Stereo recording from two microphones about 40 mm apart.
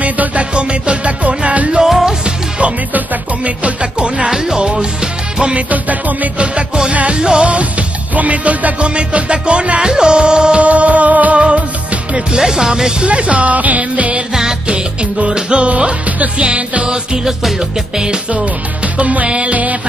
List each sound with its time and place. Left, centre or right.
0.0 s music: right
1.8 s music: centre
3.8 s music: right
5.7 s music: right
6.3 s music: right
10.6 s music: right
12.4 s music: centre
13.0 s music: right
18.9 s music: right